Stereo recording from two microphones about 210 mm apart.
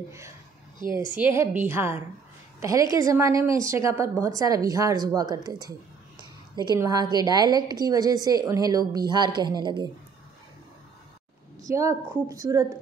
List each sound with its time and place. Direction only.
1.1 s a woman's voice: 10° right (ahead or behind)
11.6 s a woman's voice: 15° right (ahead or behind)